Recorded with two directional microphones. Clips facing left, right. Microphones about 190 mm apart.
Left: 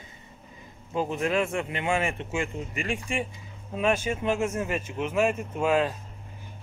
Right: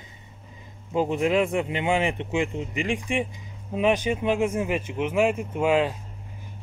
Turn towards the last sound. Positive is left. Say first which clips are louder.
# right 2 dB
turn(degrees=-15)  # may be behind; listen again after turning